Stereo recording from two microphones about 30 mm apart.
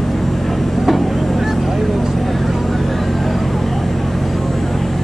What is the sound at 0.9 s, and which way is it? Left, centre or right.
Vehicle, centre.